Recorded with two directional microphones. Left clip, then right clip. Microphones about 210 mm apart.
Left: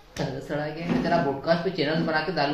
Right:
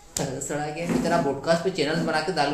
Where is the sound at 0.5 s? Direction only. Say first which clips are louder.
Even; centre (ahead or behind).